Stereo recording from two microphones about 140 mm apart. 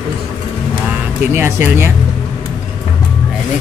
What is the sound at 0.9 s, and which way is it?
Speech, 15° right (ahead or behind).